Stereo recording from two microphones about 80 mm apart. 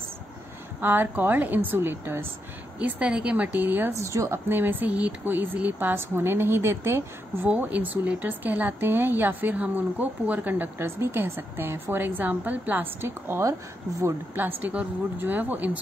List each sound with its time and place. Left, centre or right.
0.7 s speech: right
2.8 s speech: centre
3.9 s a woman's voice: right
4.5 s speech: right
7.4 s speech: centre